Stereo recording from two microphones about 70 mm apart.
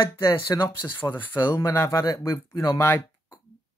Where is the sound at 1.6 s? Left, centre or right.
Left.